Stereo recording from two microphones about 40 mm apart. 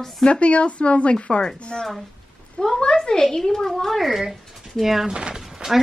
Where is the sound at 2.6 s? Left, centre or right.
Left.